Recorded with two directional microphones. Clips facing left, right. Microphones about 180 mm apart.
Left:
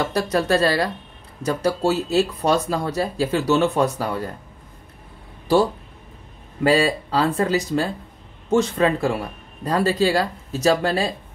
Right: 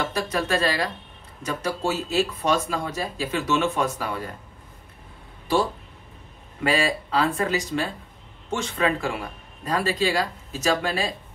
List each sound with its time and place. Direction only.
0.1 s speech: 35° left (ahead or behind)
6.6 s speech: 35° left (ahead or behind)